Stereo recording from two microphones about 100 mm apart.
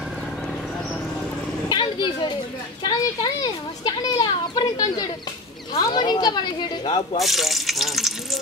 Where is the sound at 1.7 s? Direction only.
50° left (ahead or behind).